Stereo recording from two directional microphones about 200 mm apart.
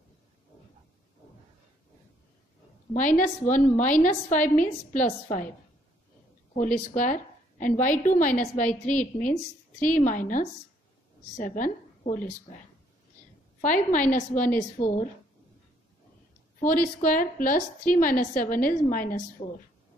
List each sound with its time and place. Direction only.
2.9 s a woman's voice: 40° left (ahead or behind)
6.5 s a woman's voice: 40° left (ahead or behind)
13.6 s a woman's voice: 40° left (ahead or behind)
16.5 s a woman's voice: 45° left (ahead or behind)